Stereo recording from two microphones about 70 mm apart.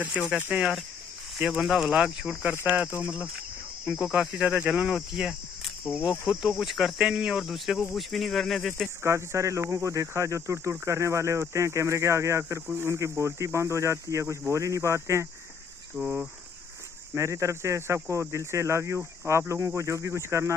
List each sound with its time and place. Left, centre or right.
0.3 s speech: right
1.6 s speech: centre
2.6 s speech: centre
9.0 s speech: right
16.0 s speech: centre
17.1 s speech: right